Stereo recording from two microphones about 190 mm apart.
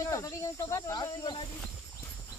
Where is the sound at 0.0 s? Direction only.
15° left (ahead or behind).